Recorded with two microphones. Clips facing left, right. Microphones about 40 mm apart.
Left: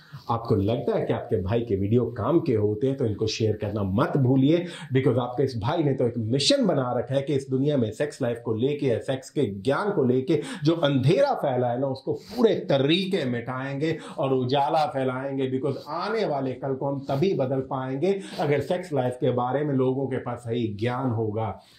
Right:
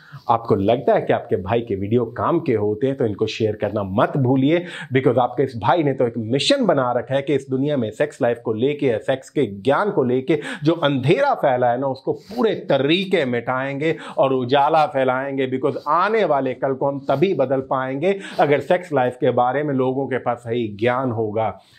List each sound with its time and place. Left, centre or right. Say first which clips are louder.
0.3 s speech: right 8 dB; right
13.0 s speech: right 7 dB; right